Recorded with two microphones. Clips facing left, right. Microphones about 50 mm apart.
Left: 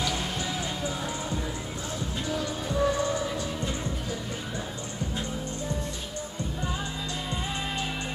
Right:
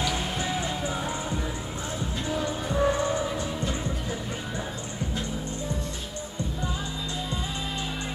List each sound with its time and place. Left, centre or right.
0.0 s music: centre